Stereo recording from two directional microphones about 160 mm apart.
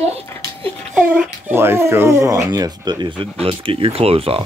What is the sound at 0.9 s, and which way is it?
Speech, 10° right (ahead or behind).